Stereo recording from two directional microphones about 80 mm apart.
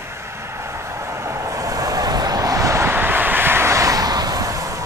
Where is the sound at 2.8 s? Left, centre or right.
Right.